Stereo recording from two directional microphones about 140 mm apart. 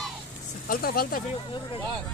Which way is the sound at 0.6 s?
90° left.